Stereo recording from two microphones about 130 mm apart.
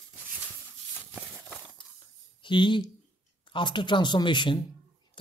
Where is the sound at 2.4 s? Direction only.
40° left (ahead or behind).